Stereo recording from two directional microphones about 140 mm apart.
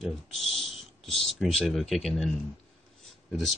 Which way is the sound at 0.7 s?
Centre (ahead or behind).